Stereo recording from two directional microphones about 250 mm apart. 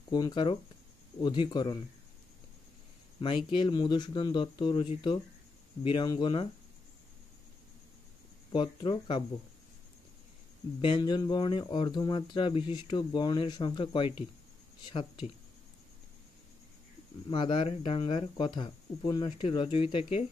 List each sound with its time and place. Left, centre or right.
0.1 s speech: centre
3.2 s speech: centre
8.5 s speech: centre
10.8 s speech: centre
17.3 s speech: centre
19.9 s speech: left